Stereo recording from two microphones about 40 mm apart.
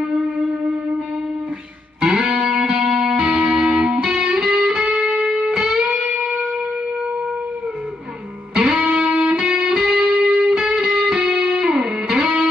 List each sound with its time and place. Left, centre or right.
2.0 s music: centre
8.6 s music: right